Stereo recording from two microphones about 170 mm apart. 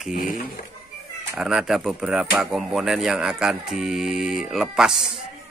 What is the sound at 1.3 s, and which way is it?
Speech, 5° right (ahead or behind).